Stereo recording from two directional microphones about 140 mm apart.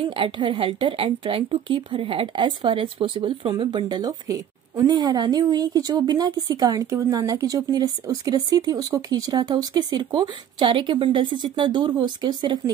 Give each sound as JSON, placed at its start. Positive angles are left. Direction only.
{"t": 0.0, "sound": "a woman's voice", "side_deg": -35}